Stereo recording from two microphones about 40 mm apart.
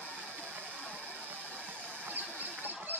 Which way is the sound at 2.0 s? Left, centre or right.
Right.